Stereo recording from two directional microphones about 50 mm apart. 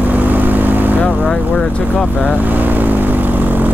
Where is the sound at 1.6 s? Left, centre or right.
Left.